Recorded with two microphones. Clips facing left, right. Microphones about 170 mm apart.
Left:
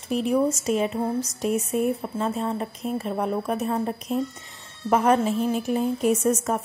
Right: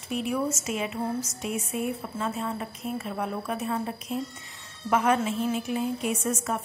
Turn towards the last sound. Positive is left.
turn(degrees=40)  # may be behind; listen again after turning